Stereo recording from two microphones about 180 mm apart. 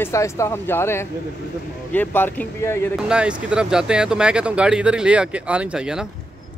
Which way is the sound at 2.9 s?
5° right (ahead or behind).